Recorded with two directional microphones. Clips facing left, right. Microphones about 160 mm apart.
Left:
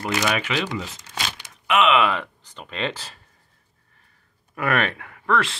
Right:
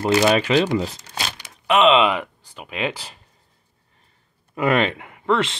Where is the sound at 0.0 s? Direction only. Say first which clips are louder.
Right 7 dB; 30° right (ahead or behind); by 3.2 s 15° right (ahead or behind).